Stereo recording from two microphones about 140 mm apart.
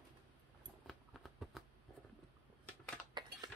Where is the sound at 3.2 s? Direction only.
30° right (ahead or behind).